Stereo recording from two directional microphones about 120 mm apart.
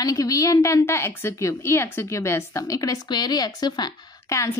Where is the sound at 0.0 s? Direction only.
30° left (ahead or behind).